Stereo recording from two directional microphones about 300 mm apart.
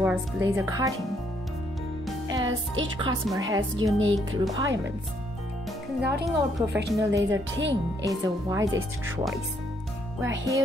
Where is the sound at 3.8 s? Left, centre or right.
Right.